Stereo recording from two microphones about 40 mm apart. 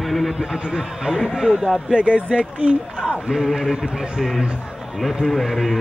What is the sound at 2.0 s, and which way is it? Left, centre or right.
Speech, right.